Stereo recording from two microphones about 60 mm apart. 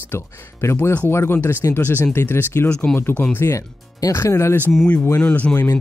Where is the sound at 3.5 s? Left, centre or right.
Left.